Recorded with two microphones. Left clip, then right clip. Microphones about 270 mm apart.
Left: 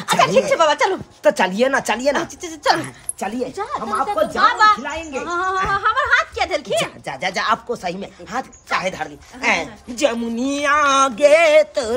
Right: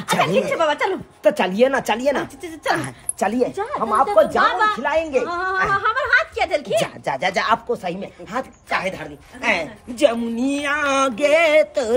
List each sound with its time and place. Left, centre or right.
0.0 s speech: left
1.2 s a woman's voice: centre
2.4 s speech: left
2.8 s a woman's voice: centre
4.8 s speech: centre
5.2 s speech: centre
5.8 s a sound: centre
7.1 s speech: centre